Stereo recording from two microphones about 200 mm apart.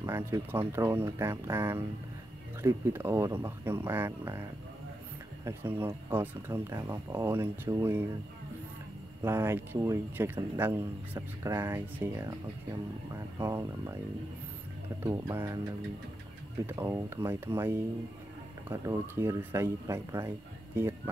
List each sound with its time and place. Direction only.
0.0 s a man's voice: 15° right (ahead or behind)
9.2 s a man's voice: 10° right (ahead or behind)
13.4 s a man's voice: 15° right (ahead or behind)
15.0 s a man's voice: 15° right (ahead or behind)
16.6 s a man's voice: 15° right (ahead or behind)